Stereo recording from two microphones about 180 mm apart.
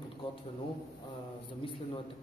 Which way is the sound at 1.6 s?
30° left (ahead or behind).